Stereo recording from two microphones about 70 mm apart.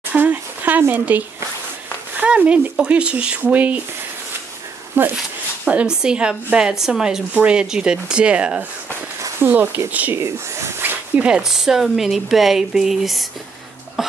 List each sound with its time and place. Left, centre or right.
0.2 s speech: right
5.0 s speech: right
5.7 s speech: centre
9.4 s speech: right
10.1 s speech: right
10.8 s dog: right
11.2 s speech: centre
14.0 s a sound: centre